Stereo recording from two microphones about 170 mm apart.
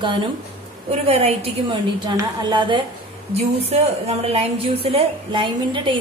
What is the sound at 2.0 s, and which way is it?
A woman's voice, 25° right (ahead or behind).